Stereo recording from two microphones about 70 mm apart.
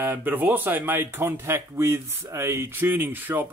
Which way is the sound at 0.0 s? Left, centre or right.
Right.